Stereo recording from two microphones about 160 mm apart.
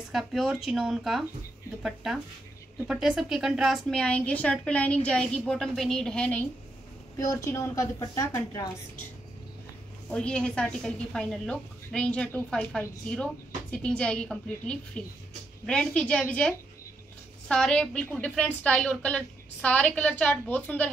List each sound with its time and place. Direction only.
0.1 s a woman's voice: centre (ahead or behind)
7.2 s a woman's voice: 20° left (ahead or behind)
10.0 s a woman's voice: 5° left (ahead or behind)